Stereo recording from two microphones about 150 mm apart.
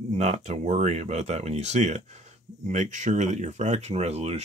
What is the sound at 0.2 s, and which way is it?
Speech, 50° right (ahead or behind).